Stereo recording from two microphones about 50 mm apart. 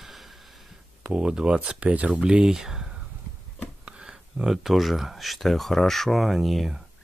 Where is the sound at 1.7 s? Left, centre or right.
Right; by 2.9 s centre.